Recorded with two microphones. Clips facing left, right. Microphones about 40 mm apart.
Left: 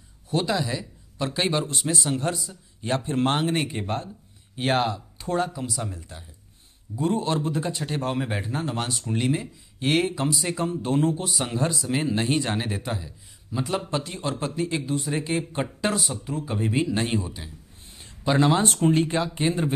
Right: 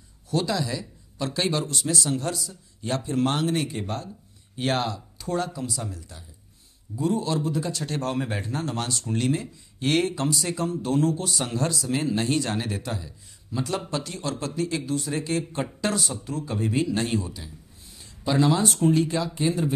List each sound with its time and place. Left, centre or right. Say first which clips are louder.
0.3 s speech: left 1 dB; left
4.6 s a man's voice: left 2 dB; centre; by 7.8 s left
7.8 s speech: left 1 dB; centre; by 19.7 s left